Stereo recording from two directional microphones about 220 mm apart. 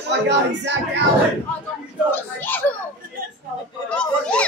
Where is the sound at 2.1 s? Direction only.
10° left (ahead or behind).